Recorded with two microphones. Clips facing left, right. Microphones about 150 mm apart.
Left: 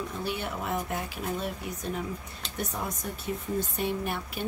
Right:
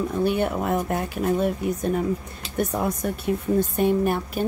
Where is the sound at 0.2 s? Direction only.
50° right (ahead or behind).